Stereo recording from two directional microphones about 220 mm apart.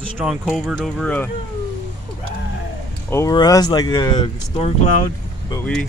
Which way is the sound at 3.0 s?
15° left (ahead or behind).